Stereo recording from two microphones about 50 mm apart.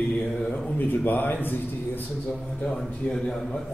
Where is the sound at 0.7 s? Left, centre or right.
Left.